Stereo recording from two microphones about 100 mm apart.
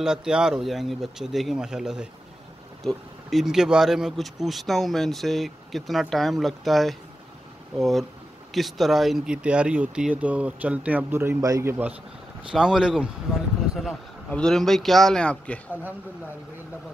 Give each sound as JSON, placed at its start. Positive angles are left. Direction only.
{"t": 0.0, "sound": "speech", "side_deg": -5}
{"t": 12.4, "sound": "speech", "side_deg": -5}
{"t": 14.3, "sound": "speech", "side_deg": 5}